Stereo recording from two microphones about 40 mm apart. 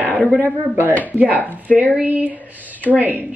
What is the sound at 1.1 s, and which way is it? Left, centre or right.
Speech, right.